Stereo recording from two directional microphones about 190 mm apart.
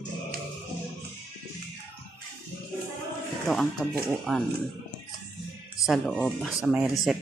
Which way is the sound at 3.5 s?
Centre (ahead or behind).